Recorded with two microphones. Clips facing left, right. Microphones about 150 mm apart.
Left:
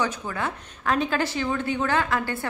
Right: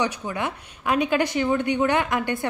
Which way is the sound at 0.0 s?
15° right (ahead or behind).